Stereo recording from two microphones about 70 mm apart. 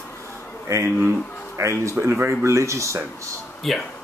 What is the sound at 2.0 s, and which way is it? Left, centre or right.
Speech, right.